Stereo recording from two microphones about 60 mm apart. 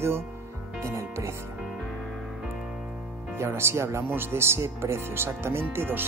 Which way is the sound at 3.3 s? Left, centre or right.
Right.